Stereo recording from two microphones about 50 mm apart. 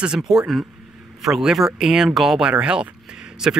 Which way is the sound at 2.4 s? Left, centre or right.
Centre.